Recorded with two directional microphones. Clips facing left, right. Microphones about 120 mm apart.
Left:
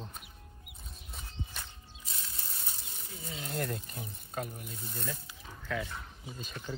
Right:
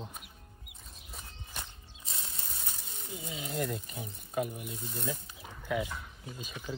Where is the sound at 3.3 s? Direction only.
5° right (ahead or behind).